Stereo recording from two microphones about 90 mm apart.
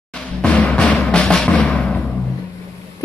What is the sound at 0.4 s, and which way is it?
Timpani, 15° left (ahead or behind).